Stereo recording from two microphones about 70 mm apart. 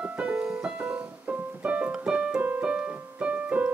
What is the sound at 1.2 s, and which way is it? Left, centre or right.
Piano, right.